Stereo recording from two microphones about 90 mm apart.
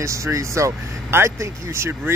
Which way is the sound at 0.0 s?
35° right (ahead or behind).